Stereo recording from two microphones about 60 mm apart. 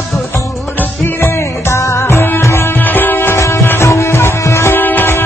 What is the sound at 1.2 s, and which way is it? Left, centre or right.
Music, left.